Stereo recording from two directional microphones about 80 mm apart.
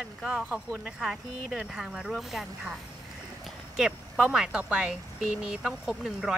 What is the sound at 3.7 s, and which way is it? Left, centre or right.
Speech, centre.